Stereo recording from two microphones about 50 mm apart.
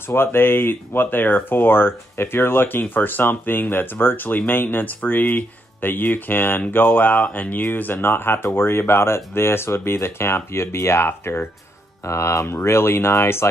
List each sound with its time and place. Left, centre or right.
0.1 s speech: left
6.7 s a sound: left
7.6 s speech: left
12.0 s speech: left